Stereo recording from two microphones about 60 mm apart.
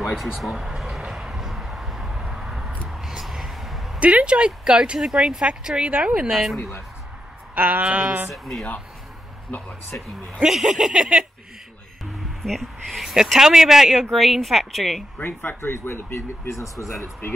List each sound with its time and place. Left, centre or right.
0.0 s a sound: centre
4.0 s speech: right
7.5 s speech: right
8.3 s a woman's voice: centre
10.4 s speech: centre
12.4 s speech: centre
13.0 s a woman's voice: centre
15.1 s speech: left